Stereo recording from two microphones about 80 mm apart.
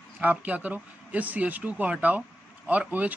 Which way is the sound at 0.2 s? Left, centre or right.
Centre.